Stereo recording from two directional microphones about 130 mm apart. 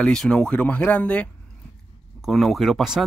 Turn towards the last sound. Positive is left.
turn(degrees=0)  # may be behind; listen again after turning